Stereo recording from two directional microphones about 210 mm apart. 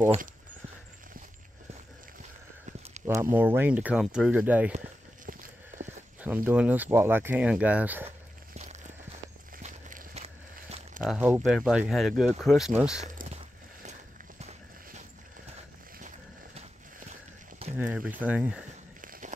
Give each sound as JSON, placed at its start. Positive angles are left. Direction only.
{"t": 3.3, "sound": "speech", "side_deg": -10}
{"t": 4.7, "sound": "clip-clop", "side_deg": -35}
{"t": 5.8, "sound": "a sound", "side_deg": -35}
{"t": 6.2, "sound": "speech", "side_deg": -5}
{"t": 8.5, "sound": "walk", "side_deg": -35}
{"t": 9.6, "sound": "a sound", "side_deg": -35}
{"t": 11.1, "sound": "speech", "side_deg": -5}
{"t": 13.0, "sound": "walk", "side_deg": -35}
{"t": 16.5, "sound": "a sound", "side_deg": -35}
{"t": 17.7, "sound": "speech", "side_deg": -5}
{"t": 18.9, "sound": "walk", "side_deg": -40}